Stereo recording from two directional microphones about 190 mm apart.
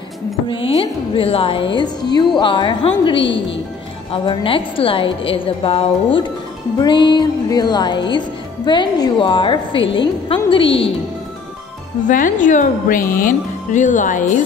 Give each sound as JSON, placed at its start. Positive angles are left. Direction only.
{"t": 0.5, "sound": "speech", "side_deg": 30}
{"t": 12.1, "sound": "speech", "side_deg": 45}